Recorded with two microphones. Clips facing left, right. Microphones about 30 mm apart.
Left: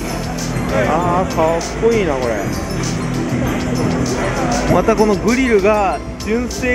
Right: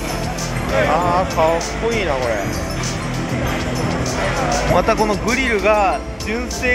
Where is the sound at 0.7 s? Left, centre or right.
Right.